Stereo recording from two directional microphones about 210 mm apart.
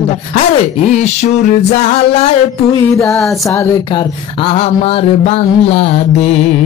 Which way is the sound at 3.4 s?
15° left (ahead or behind).